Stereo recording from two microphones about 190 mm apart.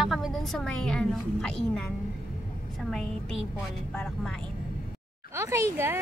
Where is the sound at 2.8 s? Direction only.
Centre (ahead or behind).